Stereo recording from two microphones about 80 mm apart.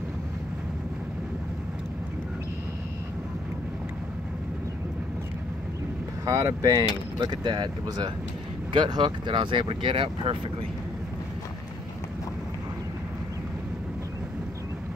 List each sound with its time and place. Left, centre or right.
6.2 s speech: right
7.2 s speech: right
8.7 s speech: right